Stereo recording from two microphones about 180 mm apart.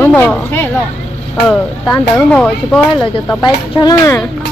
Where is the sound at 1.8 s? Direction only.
20° left (ahead or behind).